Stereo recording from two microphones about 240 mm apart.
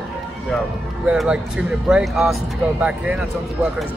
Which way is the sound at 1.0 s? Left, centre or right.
Centre.